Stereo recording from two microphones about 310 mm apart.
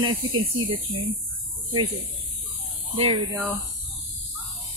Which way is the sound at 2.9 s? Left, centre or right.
Centre.